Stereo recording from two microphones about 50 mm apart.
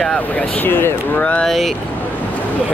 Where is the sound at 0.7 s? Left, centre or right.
Left.